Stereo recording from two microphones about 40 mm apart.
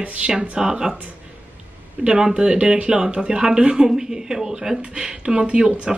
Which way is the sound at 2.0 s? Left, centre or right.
Right.